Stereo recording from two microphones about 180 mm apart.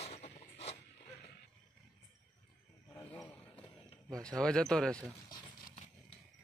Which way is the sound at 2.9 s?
10° left (ahead or behind).